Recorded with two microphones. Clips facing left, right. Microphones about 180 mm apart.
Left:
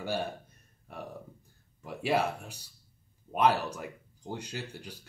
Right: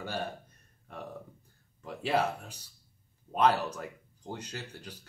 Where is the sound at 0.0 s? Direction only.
10° left (ahead or behind).